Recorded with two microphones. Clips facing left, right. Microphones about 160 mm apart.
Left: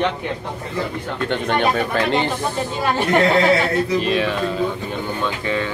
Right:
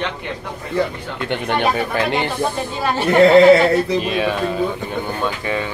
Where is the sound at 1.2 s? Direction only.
15° right (ahead or behind).